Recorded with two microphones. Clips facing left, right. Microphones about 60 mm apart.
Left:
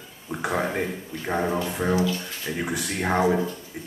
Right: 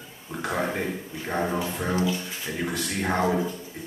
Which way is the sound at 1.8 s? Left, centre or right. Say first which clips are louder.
Left 4 dB; left.